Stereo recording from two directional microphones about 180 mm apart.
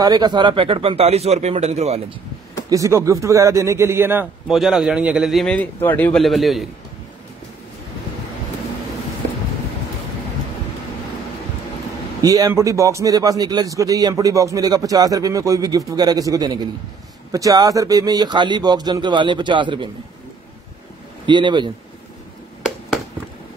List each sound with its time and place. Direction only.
0.0 s speech: 25° right (ahead or behind)
2.7 s a man's voice: 15° right (ahead or behind); by 6.7 s centre (ahead or behind)
12.2 s a man's voice: 20° right (ahead or behind)
21.3 s a man's voice: 25° right (ahead or behind)